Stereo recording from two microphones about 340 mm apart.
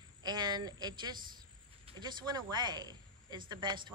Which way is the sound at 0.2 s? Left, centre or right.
Centre.